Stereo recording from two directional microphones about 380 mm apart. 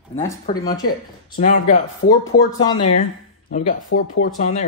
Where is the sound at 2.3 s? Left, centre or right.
Left.